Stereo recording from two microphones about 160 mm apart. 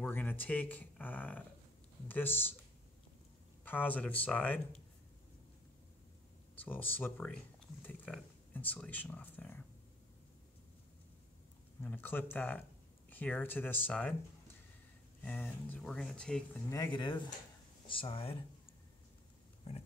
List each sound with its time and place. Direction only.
0.0 s speech: 10° left (ahead or behind)
3.6 s speech: 10° left (ahead or behind)
6.6 s speech: 10° left (ahead or behind)
8.5 s speech: 10° left (ahead or behind)
11.8 s speech: 10° left (ahead or behind)
15.2 s speech: 10° left (ahead or behind)
16.7 s speech: 25° left (ahead or behind)
19.7 s pig: 40° left (ahead or behind)